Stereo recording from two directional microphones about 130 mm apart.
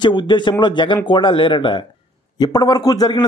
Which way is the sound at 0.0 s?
35° left (ahead or behind).